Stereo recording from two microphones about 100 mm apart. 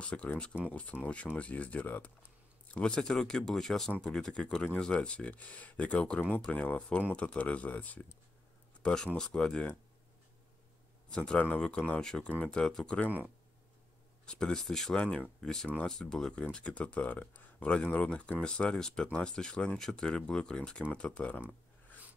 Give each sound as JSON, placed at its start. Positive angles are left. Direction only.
{"t": 0.0, "sound": "speech", "side_deg": 10}
{"t": 11.1, "sound": "speech", "side_deg": 10}
{"t": 14.2, "sound": "speech", "side_deg": 10}